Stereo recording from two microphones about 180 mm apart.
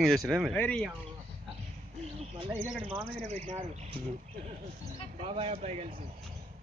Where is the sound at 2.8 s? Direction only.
30° right (ahead or behind).